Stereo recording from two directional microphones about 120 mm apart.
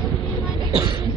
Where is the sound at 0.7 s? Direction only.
40° right (ahead or behind).